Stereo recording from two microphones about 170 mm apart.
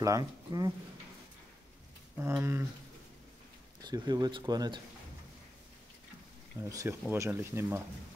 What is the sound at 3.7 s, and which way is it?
Speech, 25° right (ahead or behind).